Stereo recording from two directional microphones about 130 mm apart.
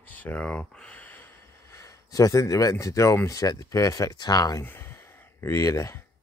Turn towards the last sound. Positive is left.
turn(degrees=20)  # may be behind; listen again after turning